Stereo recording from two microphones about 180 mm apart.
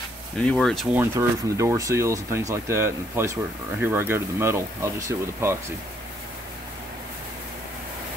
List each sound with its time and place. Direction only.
0.4 s speech: 5° left (ahead or behind)
0.9 s speech: 15° right (ahead or behind)